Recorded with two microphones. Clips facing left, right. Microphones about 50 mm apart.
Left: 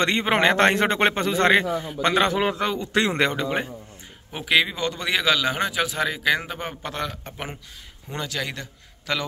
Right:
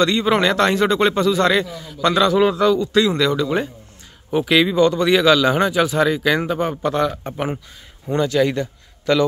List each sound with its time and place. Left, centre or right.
0.0 s speech: left
2.9 s speech: left
4.3 s a man's voice: centre